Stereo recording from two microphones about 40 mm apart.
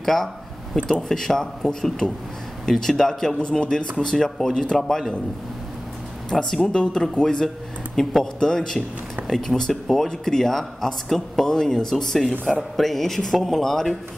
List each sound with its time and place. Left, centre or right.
0.0 s speech: centre
3.3 s a man's voice: left
6.6 s speech: left
7.2 s speech: centre